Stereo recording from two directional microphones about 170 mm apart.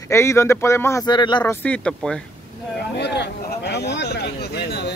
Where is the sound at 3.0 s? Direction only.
80° left.